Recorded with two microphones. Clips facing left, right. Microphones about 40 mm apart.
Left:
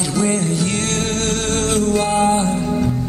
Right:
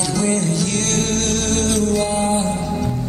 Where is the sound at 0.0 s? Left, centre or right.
Centre.